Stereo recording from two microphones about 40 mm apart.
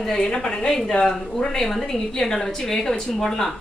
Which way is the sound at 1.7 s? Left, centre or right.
Centre.